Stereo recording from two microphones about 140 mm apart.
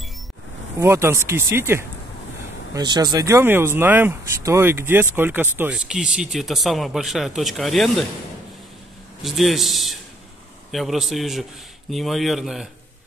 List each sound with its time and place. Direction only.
0.7 s speech: 20° right (ahead or behind)
2.7 s speech: 30° right (ahead or behind); by 8.0 s centre (ahead or behind)
9.2 s speech: centre (ahead or behind)